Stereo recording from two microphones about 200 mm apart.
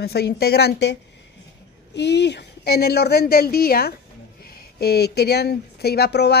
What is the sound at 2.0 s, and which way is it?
A woman's voice, 60° left (ahead or behind).